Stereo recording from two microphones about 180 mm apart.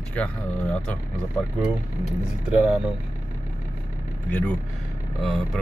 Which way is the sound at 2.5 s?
10° right (ahead or behind).